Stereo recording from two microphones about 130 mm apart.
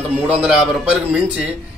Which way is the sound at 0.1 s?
5° right (ahead or behind).